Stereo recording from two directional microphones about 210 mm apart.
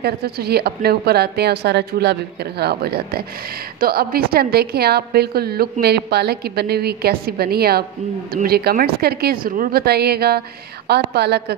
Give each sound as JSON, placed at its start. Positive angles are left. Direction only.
{"t": 0.0, "sound": "a woman's voice", "side_deg": -50}